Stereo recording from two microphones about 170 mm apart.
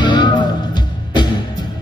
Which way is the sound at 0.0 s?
25° left (ahead or behind).